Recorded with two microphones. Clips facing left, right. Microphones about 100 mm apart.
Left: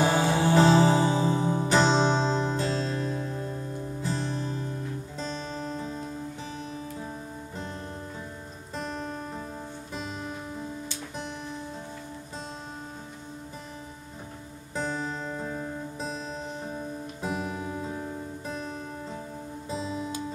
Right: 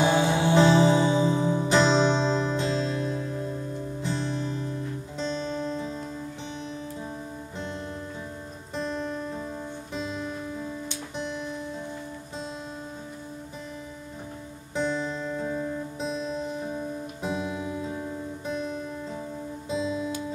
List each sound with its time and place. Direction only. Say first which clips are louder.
0.0 s music: right 1 dB; 40° left (ahead or behind)
8.7 s music: right 4 dB; 40° left (ahead or behind)
14.8 s music: right 3 dB; 35° left (ahead or behind)
17.4 s music: right 2 dB; 35° left (ahead or behind)